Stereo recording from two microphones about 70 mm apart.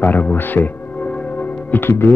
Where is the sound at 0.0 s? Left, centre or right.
Left.